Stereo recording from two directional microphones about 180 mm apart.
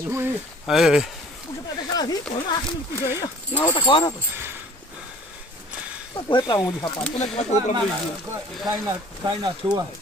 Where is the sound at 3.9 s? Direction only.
25° left (ahead or behind).